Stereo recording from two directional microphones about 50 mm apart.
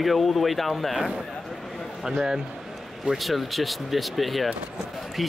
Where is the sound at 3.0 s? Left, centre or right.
Centre.